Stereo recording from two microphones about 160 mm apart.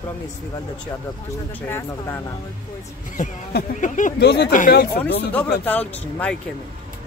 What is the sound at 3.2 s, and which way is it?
Speech, 50° left (ahead or behind).